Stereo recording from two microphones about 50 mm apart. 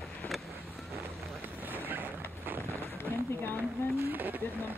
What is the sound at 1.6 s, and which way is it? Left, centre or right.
Vehicle, right.